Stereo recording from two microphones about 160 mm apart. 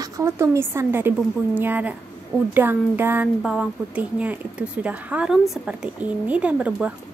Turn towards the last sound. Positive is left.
turn(degrees=-5)  # may be behind; listen again after turning